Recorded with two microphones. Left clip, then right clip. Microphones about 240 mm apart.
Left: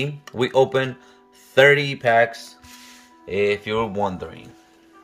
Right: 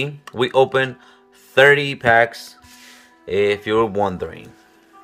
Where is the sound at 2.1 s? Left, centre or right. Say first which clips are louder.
Right 2 dB; right.